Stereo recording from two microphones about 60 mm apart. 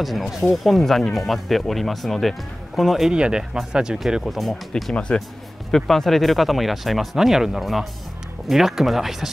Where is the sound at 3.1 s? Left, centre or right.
Centre.